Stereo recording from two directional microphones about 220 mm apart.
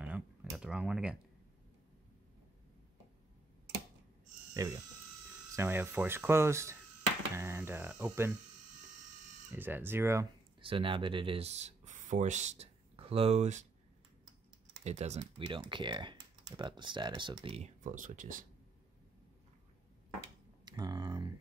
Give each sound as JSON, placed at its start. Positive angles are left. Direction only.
{"t": 0.0, "sound": "a sound", "side_deg": -5}
{"t": 4.6, "sound": "speech", "side_deg": -15}
{"t": 9.5, "sound": "speech", "side_deg": -10}
{"t": 10.6, "sound": "speech", "side_deg": -25}
{"t": 14.9, "sound": "speech", "side_deg": -30}
{"t": 20.6, "sound": "a sound", "side_deg": -20}